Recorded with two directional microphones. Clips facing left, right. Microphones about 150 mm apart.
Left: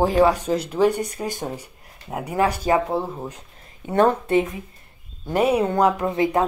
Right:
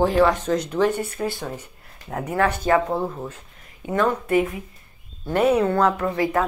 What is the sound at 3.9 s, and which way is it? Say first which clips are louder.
Speech: left 2 dB; 30° left (ahead or behind).